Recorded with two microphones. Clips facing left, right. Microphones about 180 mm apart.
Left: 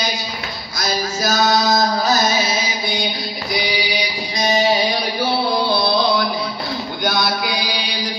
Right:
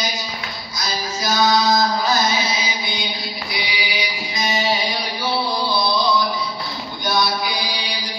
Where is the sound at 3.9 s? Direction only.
35° left (ahead or behind).